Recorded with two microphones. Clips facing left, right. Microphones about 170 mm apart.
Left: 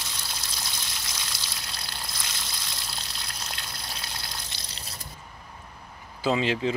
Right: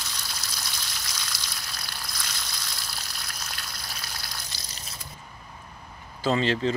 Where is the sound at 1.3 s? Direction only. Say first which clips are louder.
Even; 25° left (ahead or behind).